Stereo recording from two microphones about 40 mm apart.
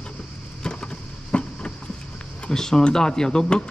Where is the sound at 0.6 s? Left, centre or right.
Left.